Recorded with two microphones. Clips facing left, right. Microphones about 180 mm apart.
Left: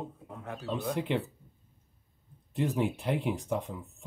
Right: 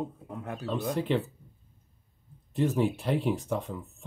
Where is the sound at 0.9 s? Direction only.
15° left (ahead or behind).